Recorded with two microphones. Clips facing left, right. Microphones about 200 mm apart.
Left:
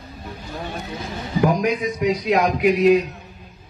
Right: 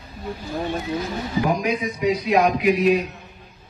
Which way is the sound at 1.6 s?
55° left (ahead or behind).